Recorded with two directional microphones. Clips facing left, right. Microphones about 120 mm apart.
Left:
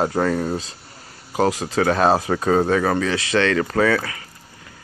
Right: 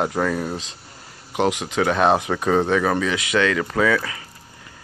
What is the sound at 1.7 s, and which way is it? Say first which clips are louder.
Speech: left 1 dB; centre (ahead or behind).